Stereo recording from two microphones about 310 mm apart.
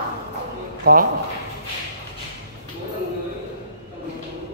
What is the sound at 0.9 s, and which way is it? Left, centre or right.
Speech, right.